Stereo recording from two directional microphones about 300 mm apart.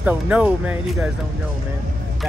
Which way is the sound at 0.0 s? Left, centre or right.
Centre.